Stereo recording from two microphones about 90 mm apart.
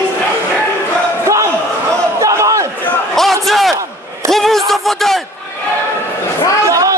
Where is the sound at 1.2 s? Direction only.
30° right (ahead or behind).